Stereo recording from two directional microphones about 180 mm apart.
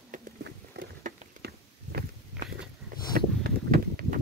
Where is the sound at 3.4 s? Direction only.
50° right (ahead or behind).